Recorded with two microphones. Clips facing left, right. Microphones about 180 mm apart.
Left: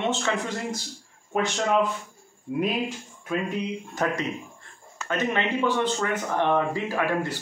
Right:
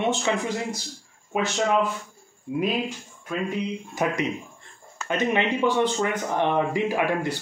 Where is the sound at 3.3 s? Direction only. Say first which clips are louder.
Left 1 dB; centre (ahead or behind).